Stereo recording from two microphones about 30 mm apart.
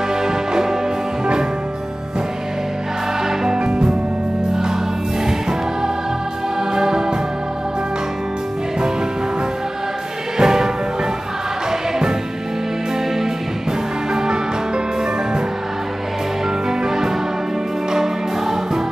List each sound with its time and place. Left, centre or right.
0.1 s music: right
3.5 s music: right
5.2 s music: centre
10.3 s music: centre
14.1 s music: right
16.6 s music: centre